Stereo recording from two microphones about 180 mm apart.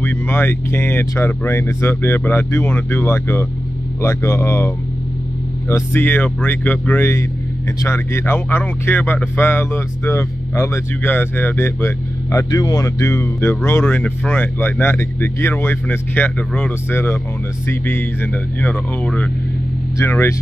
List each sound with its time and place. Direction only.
0.0 s speech: 10° left (ahead or behind)